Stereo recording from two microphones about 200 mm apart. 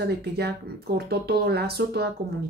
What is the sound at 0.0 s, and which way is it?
Speech, 55° right (ahead or behind).